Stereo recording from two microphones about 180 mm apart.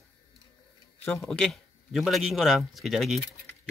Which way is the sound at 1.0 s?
5° left (ahead or behind).